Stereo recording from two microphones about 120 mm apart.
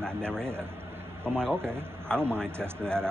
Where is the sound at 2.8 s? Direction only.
5° left (ahead or behind).